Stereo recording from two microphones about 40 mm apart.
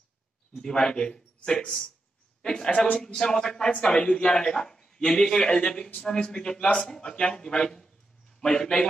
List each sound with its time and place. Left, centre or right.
0.6 s a man's voice: centre
2.4 s a sound: centre
3.0 s a man's voice: centre